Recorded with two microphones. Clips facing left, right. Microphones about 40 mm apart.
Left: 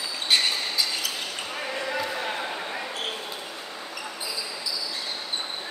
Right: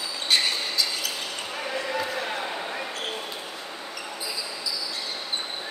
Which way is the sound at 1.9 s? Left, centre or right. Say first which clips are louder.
Even; centre.